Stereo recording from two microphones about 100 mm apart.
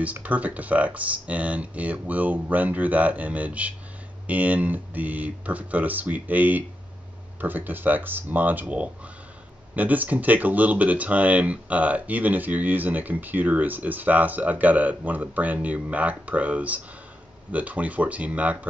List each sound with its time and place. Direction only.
0.0 s speech: 15° right (ahead or behind)